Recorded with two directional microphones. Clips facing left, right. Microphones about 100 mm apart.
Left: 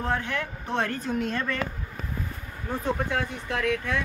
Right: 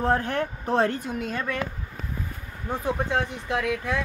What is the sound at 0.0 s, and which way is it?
Speech, 40° right (ahead or behind).